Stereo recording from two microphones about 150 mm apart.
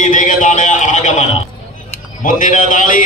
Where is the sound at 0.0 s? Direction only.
60° left (ahead or behind).